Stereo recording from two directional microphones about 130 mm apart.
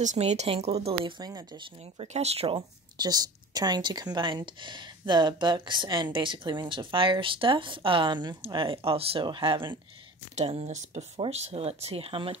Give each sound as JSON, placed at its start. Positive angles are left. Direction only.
{"t": 0.0, "sound": "speech", "side_deg": -60}
{"t": 2.0, "sound": "speech", "side_deg": -55}
{"t": 3.0, "sound": "speech", "side_deg": -30}
{"t": 10.3, "sound": "speech", "side_deg": -50}